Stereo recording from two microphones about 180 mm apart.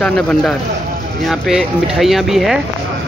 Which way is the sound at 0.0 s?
5° left (ahead or behind).